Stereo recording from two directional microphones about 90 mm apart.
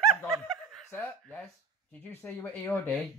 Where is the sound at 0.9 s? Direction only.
20° left (ahead or behind).